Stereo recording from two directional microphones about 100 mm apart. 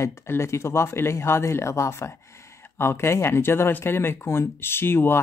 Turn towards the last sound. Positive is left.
turn(degrees=20)  # may be behind; listen again after turning